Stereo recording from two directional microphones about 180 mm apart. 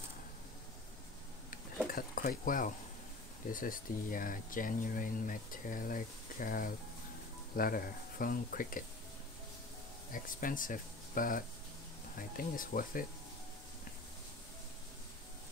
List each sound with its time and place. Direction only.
1.5 s a sound: 55° left (ahead or behind)
3.4 s speech: 50° left (ahead or behind)
10.1 s speech: 50° left (ahead or behind)